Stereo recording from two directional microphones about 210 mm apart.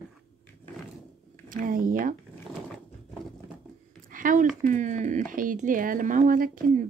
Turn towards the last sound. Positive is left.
turn(degrees=-40)  # may be behind; listen again after turning